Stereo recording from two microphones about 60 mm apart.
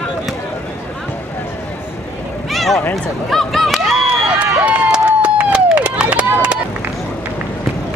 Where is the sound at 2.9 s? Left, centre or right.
Centre.